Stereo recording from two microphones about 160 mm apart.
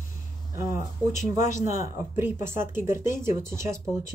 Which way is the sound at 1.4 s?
50° left (ahead or behind).